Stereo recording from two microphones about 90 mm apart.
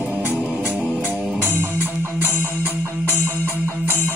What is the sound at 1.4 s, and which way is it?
Music, 20° right (ahead or behind).